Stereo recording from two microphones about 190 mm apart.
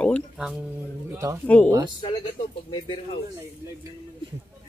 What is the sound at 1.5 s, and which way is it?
Speech, 10° left (ahead or behind).